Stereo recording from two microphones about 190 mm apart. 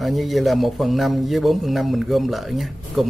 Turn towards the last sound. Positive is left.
turn(degrees=0)  # may be behind; listen again after turning